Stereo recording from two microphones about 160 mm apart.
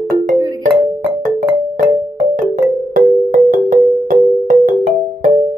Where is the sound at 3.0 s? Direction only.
60° right (ahead or behind).